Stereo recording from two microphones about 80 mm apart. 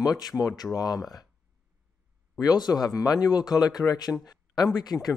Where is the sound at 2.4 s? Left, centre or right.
Left.